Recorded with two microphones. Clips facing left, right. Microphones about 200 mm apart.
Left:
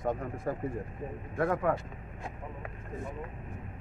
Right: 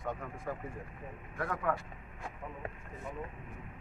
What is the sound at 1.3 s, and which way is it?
Speech, 25° left (ahead or behind).